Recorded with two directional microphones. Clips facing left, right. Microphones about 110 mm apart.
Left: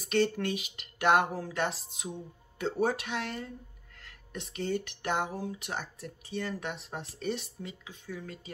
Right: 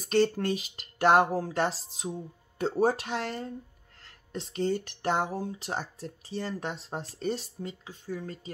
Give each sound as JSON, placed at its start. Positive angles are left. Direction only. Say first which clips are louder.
{"t": 0.1, "sound": "speech", "louder": "right 3 dB", "side_deg": -35}